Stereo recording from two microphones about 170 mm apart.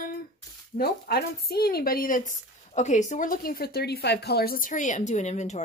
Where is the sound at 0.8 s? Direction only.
65° left (ahead or behind).